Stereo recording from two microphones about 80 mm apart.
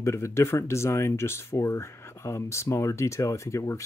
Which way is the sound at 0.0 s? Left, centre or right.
Left.